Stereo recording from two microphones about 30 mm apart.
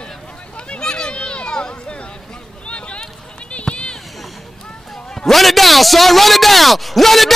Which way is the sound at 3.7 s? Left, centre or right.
Left.